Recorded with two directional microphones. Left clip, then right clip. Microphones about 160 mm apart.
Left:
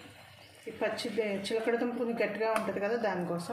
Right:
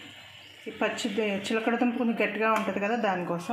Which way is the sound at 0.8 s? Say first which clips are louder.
Right 4 dB; 45° right (ahead or behind).